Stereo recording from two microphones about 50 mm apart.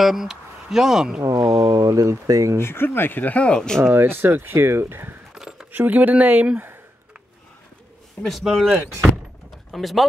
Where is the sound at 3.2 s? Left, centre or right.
Left.